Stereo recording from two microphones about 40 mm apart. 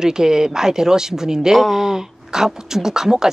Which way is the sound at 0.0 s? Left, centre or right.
Centre.